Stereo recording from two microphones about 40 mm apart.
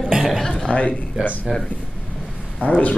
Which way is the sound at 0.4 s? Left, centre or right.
Centre.